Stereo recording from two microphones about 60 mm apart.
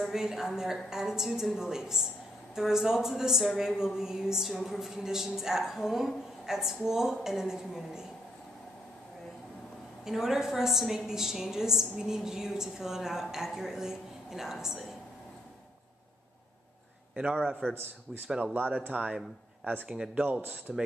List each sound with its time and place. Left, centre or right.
0.0 s a woman's voice: centre
10.0 s a woman's voice: centre
17.1 s a man's voice: centre
17.7 s a man's voice: right
19.9 s a woman's voice: centre